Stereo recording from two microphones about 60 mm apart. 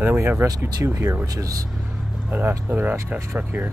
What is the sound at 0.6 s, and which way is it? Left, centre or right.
Speech, right.